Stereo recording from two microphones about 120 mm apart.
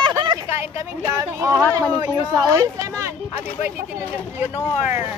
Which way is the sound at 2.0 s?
35° right (ahead or behind).